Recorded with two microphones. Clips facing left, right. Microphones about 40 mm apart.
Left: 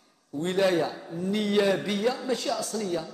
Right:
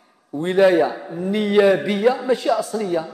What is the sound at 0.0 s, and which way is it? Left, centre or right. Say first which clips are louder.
A man's voice: right 6 dB; centre.